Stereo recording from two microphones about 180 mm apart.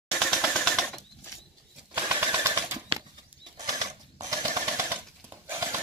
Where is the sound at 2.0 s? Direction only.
15° right (ahead or behind).